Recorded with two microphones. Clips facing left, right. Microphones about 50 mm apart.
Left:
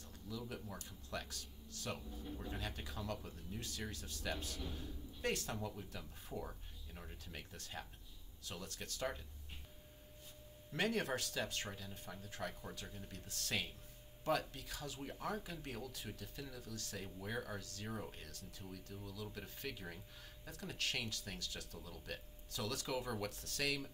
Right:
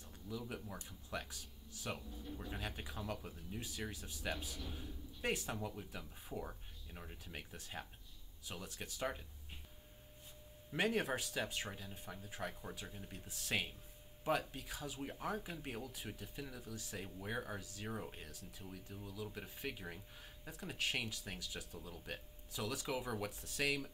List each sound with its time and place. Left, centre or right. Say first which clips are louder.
0.3 s speech: right 1 dB; right
2.0 s speech: left 1 dB; centre
2.5 s speech: right 1 dB; centre
10.7 s speech: right 1 dB; centre